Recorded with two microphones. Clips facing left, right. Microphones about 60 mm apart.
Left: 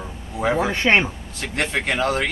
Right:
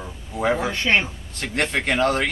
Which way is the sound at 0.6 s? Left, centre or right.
Left.